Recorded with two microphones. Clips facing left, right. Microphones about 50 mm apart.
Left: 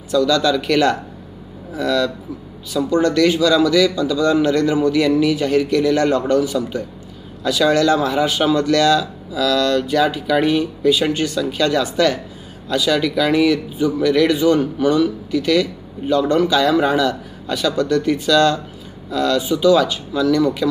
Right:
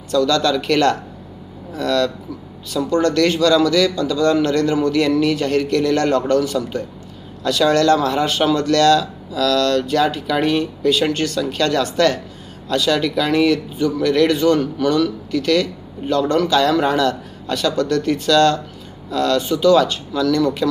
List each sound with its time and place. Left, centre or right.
0.1 s speech: centre